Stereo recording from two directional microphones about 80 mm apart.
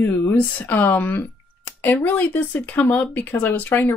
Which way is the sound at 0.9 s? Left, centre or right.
Left.